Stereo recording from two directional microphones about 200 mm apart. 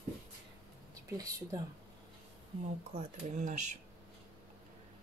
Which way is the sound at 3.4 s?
35° right (ahead or behind).